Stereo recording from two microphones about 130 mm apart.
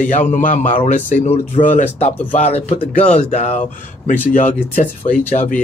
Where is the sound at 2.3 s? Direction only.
60° left (ahead or behind).